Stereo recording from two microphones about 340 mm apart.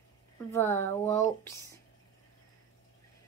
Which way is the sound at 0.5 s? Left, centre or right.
Centre.